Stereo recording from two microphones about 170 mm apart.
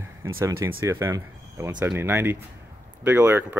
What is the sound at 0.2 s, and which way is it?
Speech, 15° right (ahead or behind).